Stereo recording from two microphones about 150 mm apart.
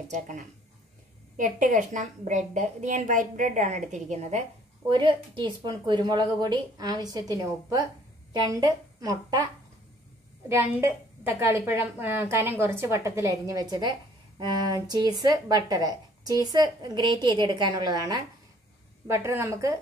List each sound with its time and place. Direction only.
0.1 s a woman's voice: 55° right (ahead or behind)
4.8 s a woman's voice: 30° right (ahead or behind)
10.5 s a woman's voice: 15° right (ahead or behind)